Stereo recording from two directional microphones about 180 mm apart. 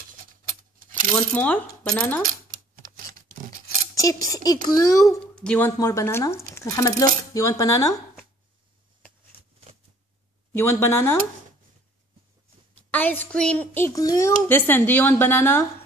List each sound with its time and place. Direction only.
0.5 s keys jangling: 50° right (ahead or behind)
1.3 s a woman's voice: 5° left (ahead or behind)
2.8 s a sound: 50° right (ahead or behind)
4.0 s speech: 20° left (ahead or behind)
5.2 s speech: 5° left (ahead or behind)
5.8 s a woman's voice: 15° left (ahead or behind)
10.5 s a woman's voice: 15° left (ahead or behind)
12.9 s a woman's voice: 10° left (ahead or behind)